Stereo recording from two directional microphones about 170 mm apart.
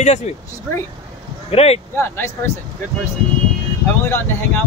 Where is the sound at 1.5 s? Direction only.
40° left (ahead or behind).